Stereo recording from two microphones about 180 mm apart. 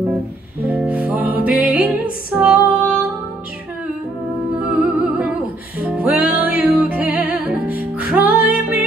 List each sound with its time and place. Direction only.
0.7 s music: 10° right (ahead or behind)
2.3 s female singing: 10° right (ahead or behind)
4.6 s music: 10° right (ahead or behind)